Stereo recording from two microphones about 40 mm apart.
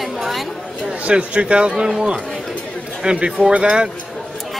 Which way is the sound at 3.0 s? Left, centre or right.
Right.